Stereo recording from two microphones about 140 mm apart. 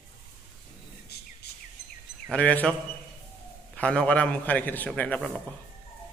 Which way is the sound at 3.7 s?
10° left (ahead or behind).